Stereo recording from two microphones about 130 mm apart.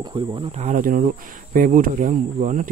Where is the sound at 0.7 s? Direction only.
90° right.